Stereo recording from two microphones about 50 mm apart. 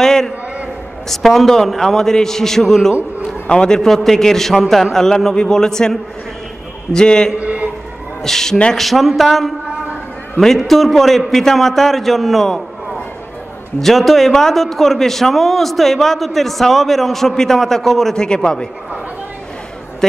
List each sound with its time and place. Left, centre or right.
0.0 s a sound: centre
1.0 s a man's voice: centre
3.4 s a man's voice: centre
7.3 s a sound: right
8.2 s a man's voice: centre
10.6 s a man's voice: centre
13.7 s a man's voice: centre